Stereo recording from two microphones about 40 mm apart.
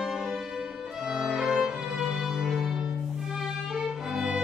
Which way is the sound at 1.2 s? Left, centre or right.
Centre.